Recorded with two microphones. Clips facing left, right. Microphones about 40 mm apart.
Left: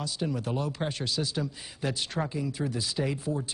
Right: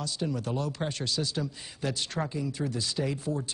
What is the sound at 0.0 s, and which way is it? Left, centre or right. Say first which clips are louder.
Speech: even; centre.